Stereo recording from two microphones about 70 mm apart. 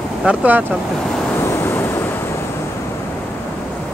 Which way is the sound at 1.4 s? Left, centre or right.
Left.